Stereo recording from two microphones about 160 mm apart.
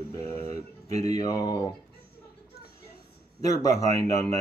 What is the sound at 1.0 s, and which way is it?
Speech, 20° left (ahead or behind).